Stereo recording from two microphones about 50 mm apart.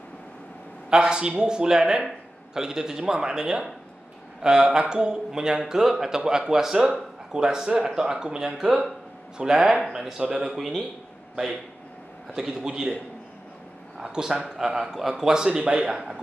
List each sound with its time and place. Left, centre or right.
0.8 s speech: centre
12.4 s speech: centre
13.9 s a man's voice: centre